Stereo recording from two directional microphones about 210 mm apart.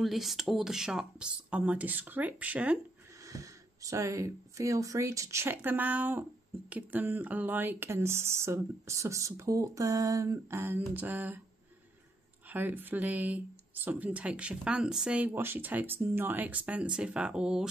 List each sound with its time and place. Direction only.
0.0 s speech: centre (ahead or behind)
12.4 s speech: 10° right (ahead or behind)